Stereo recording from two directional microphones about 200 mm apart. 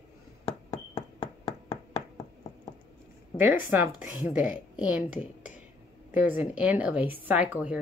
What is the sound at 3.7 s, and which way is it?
A woman's voice, 10° right (ahead or behind).